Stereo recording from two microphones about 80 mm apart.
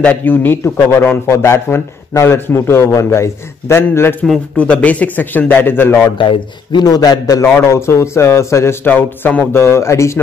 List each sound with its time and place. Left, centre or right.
0.0 s a man's voice: left
4.6 s a man's voice: centre
6.1 s speech: left
6.9 s a man's voice: left
7.5 s a man's voice: left
8.8 s a man's voice: left
9.5 s a man's voice: left